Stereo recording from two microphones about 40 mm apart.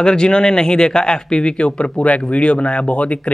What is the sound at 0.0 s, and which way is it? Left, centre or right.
A man's voice, centre.